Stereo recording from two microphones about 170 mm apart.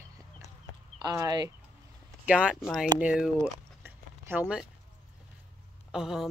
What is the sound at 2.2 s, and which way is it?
Speech, 5° right (ahead or behind).